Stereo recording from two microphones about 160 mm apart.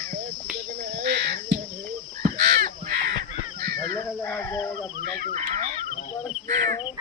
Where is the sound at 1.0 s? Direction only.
90° right.